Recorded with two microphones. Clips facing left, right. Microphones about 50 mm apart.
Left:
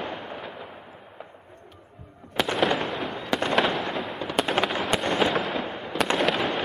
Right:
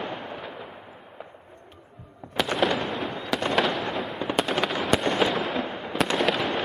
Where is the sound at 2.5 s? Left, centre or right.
Centre.